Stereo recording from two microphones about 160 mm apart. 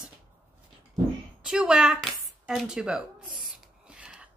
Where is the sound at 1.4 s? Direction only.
5° right (ahead or behind).